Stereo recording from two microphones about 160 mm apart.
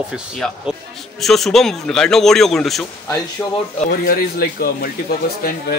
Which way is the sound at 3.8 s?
70° left (ahead or behind).